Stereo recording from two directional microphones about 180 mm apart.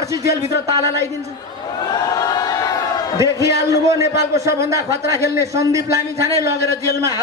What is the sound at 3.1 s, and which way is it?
A man's voice, 15° right (ahead or behind).